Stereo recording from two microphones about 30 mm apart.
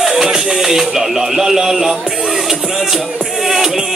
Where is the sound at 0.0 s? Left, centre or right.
Centre.